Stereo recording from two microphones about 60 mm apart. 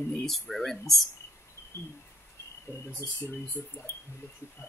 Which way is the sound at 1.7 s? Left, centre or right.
Left.